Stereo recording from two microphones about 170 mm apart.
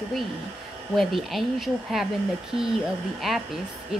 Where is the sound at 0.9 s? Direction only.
Centre (ahead or behind).